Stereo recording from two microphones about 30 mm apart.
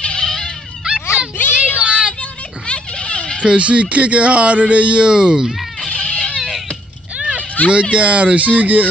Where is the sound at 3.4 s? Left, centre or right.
Right.